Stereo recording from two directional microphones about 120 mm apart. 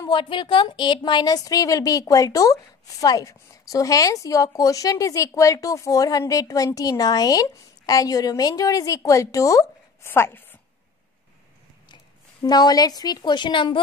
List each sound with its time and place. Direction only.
0.1 s a woman's voice: 45° left (ahead or behind); by 10.4 s 20° left (ahead or behind)
11.9 s a woman's voice: 35° left (ahead or behind)